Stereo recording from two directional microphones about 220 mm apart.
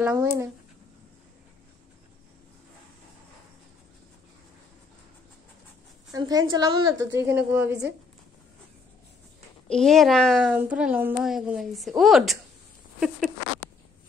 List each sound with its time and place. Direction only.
0.0 s a woman's voice: 15° right (ahead or behind)
6.1 s a woman's voice: 15° right (ahead or behind)
9.7 s a child's voice: centre (ahead or behind)